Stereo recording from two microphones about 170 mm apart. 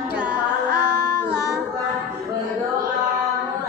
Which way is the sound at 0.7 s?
75° right (ahead or behind).